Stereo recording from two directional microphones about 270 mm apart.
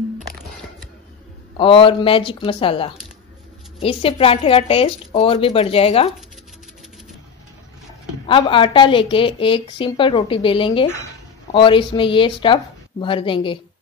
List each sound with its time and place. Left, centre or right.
1.6 s a woman's voice: centre
8.3 s a woman's voice: centre